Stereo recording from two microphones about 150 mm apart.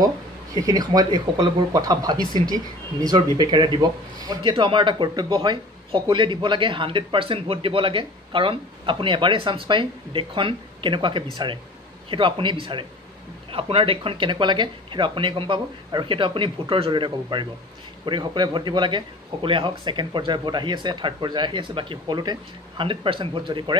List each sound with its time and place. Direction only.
0.6 s speech: 25° right (ahead or behind)
3.3 s a man's voice: 30° right (ahead or behind)